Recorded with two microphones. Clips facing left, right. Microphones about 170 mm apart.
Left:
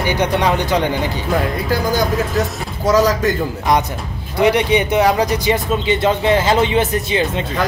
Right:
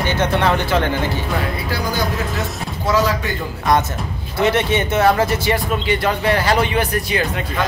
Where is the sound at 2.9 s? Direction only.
40° left (ahead or behind).